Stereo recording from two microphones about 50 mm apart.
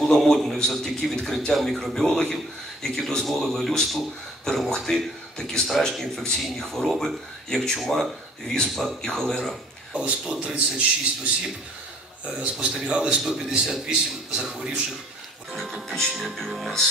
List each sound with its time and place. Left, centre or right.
0.0 s a man's voice: centre
10.0 s a man's voice: centre
12.4 s a man's voice: centre
15.9 s speech: centre